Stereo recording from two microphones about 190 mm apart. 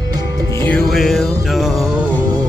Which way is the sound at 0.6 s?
5° left (ahead or behind).